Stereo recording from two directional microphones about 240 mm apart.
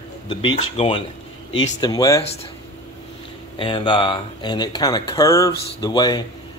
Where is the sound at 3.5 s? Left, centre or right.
Left.